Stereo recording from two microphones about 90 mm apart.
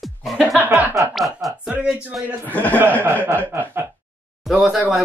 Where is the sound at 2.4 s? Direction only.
20° left (ahead or behind).